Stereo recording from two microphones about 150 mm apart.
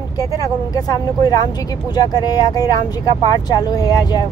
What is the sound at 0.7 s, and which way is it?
Speech, 25° left (ahead or behind).